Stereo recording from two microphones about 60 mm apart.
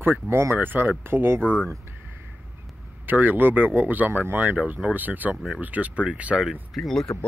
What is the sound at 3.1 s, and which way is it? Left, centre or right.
Speech, right.